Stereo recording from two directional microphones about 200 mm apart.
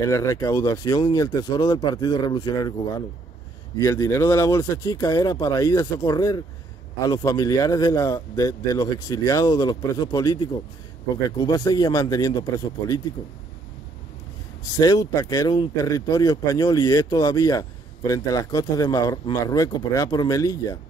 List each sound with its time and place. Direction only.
0.0 s speech: 15° left (ahead or behind)
3.7 s speech: 15° left (ahead or behind)
14.6 s speech: 20° left (ahead or behind)